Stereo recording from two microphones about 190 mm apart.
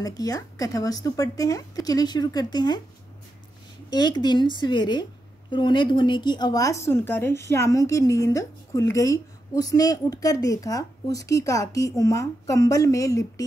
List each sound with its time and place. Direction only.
0.0 s speech: 20° left (ahead or behind)
3.9 s a woman's voice: 20° left (ahead or behind)